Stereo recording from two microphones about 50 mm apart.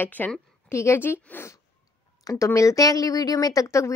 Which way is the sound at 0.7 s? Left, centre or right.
Left.